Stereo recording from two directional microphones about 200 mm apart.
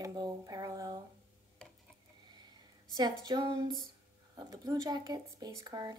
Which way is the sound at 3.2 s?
20° right (ahead or behind).